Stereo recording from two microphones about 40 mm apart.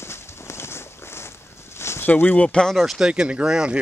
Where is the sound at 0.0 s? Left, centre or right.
Left.